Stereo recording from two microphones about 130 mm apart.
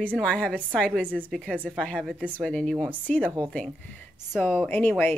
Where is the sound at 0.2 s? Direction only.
5° left (ahead or behind).